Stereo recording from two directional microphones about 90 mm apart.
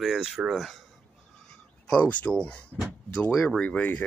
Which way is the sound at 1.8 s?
10° left (ahead or behind).